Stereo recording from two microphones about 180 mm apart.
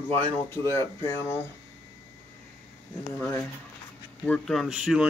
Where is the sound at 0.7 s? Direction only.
15° left (ahead or behind).